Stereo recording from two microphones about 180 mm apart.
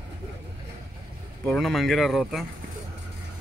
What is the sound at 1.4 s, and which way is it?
Speech, centre (ahead or behind).